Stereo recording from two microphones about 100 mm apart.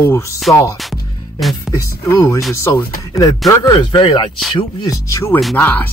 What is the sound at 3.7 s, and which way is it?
Speech, 50° left (ahead or behind).